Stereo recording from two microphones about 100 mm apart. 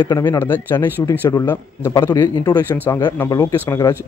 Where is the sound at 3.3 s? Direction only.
35° left (ahead or behind).